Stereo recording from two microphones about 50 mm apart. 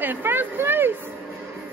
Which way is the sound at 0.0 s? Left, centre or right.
Right.